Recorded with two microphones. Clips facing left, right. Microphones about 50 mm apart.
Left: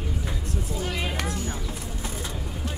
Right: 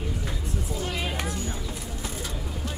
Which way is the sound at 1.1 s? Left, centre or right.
Centre.